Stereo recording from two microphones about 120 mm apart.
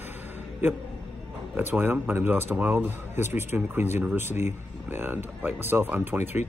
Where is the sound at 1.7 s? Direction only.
15° right (ahead or behind).